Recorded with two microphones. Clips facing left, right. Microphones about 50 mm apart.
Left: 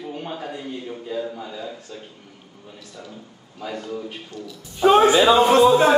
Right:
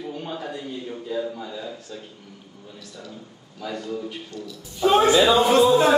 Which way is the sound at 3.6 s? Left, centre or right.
Left.